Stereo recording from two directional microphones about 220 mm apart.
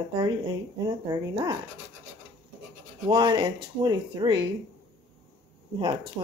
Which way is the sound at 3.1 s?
20° right (ahead or behind).